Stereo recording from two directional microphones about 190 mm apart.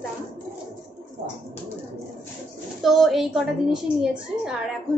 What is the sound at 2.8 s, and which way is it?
A woman's voice, centre (ahead or behind).